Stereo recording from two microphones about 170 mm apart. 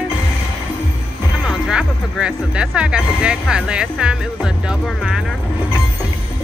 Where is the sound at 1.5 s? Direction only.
5° right (ahead or behind).